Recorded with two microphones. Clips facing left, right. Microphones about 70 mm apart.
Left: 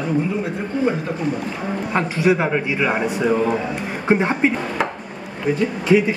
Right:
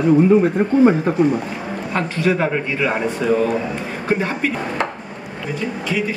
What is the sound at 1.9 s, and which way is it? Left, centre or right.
A man's voice, centre.